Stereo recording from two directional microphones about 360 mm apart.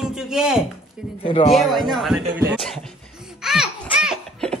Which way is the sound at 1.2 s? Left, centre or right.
Centre.